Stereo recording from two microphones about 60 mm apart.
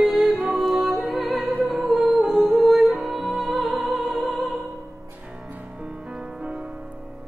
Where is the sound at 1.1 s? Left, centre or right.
Centre.